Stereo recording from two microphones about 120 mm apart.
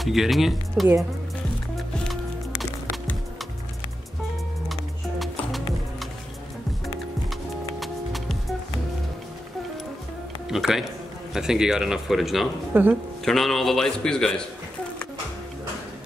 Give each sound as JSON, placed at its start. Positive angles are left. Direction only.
{"t": 0.0, "sound": "speech", "side_deg": 0}
{"t": 7.8, "sound": "music", "side_deg": 0}
{"t": 10.5, "sound": "speech", "side_deg": -5}
{"t": 12.7, "sound": "speech", "side_deg": -15}
{"t": 13.2, "sound": "speech", "side_deg": 0}